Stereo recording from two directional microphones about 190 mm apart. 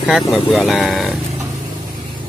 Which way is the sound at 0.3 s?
5° left (ahead or behind).